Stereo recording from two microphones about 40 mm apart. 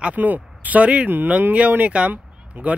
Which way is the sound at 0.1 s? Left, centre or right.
Right.